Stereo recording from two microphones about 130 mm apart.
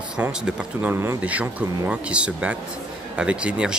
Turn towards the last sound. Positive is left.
turn(degrees=-10)  # may be behind; listen again after turning